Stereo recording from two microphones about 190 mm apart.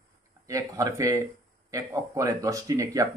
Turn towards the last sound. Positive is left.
turn(degrees=-15)  # may be behind; listen again after turning